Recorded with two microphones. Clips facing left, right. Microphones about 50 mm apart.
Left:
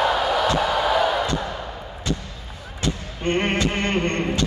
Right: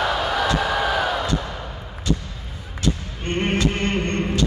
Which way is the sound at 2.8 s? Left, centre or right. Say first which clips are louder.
Right 1 dB; left.